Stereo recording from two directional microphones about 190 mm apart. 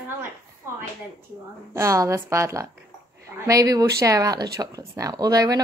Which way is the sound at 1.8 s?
15° right (ahead or behind).